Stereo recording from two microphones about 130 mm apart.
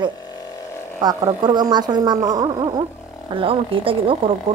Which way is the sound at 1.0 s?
30° right (ahead or behind).